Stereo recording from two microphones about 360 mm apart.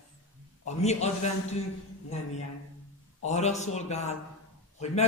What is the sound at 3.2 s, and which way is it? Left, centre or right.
A man's voice, centre.